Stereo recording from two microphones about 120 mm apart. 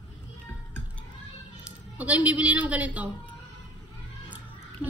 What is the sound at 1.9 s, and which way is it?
A woman's voice, 10° right (ahead or behind).